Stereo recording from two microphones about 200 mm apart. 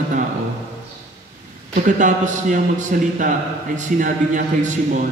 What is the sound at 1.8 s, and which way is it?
A man's voice, 40° right (ahead or behind).